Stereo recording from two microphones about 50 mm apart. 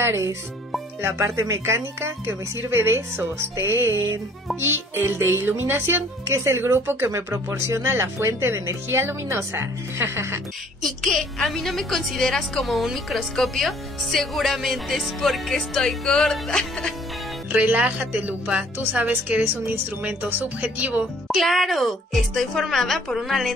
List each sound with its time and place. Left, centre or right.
0.0 s speech: right
1.0 s speech: right
1.3 s speech: right
10.8 s a woman's voice: centre
17.5 s speech: right
20.0 s speech: right
20.2 s speech: right
21.4 s a woman's voice: centre